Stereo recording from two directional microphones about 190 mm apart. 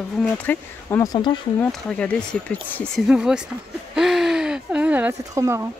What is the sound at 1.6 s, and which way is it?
Speech, 5° left (ahead or behind).